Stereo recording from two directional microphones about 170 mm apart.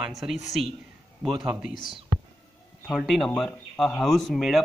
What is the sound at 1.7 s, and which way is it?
Speech, 25° left (ahead or behind).